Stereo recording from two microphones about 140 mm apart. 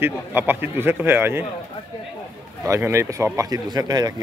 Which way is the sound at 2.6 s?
20° right (ahead or behind).